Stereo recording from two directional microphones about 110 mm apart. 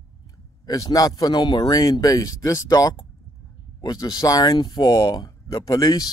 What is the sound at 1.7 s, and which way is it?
Speech, 30° left (ahead or behind).